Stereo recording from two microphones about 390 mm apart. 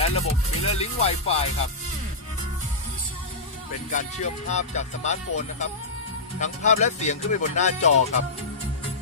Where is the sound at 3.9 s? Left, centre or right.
Centre.